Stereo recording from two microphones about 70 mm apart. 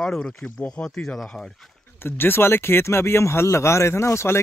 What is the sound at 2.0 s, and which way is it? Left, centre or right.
Speech, left.